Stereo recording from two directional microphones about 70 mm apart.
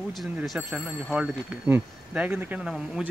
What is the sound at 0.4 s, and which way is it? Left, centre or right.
Speech, centre.